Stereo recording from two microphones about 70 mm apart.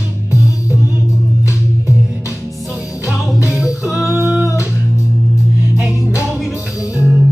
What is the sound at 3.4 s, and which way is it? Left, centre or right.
Music, centre.